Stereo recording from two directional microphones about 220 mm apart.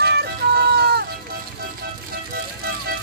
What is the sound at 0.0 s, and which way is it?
Music, 50° right (ahead or behind).